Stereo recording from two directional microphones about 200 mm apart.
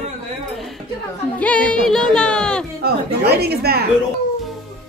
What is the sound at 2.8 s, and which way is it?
Speech, 55° right (ahead or behind).